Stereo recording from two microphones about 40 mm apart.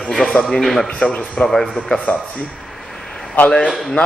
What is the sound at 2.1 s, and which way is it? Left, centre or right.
Speech, left.